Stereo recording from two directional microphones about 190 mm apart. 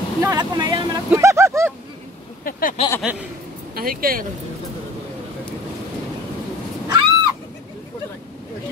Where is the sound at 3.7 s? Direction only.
50° right (ahead or behind).